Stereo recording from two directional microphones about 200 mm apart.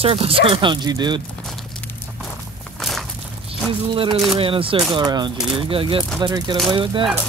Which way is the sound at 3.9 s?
25° right (ahead or behind).